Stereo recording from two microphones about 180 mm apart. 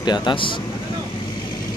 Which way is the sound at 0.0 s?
25° left (ahead or behind).